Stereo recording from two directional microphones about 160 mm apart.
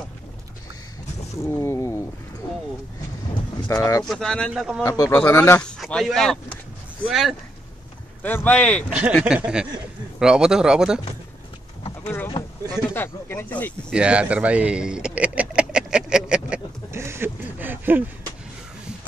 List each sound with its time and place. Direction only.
1.4 s a sound: 15° left (ahead or behind)
3.6 s speech: 20° left (ahead or behind)
4.0 s speech: 5° left (ahead or behind)
4.8 s speech: 20° left (ahead or behind)
5.8 s speech: centre (ahead or behind)
8.2 s speech: 10° left (ahead or behind)
9.2 s speech: 5° right (ahead or behind)
12.7 s speech: 15° left (ahead or behind)
13.9 s a sound: 5° right (ahead or behind)